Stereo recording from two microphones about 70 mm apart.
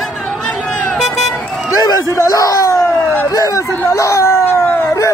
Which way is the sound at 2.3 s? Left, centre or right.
Left.